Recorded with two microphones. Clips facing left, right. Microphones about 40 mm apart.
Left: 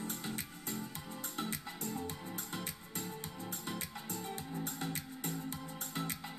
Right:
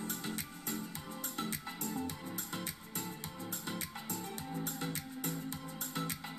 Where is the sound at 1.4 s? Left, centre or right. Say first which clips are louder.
Even; left.